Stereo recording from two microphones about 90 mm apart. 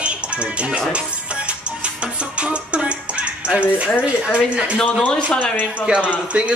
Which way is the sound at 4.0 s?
15° right (ahead or behind).